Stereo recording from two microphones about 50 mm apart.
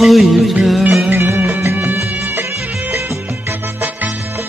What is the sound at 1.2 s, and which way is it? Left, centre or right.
Music, right.